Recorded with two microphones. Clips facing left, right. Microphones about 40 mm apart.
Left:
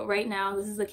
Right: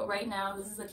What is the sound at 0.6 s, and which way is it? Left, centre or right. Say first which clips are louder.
Speech: left 11 dB; left.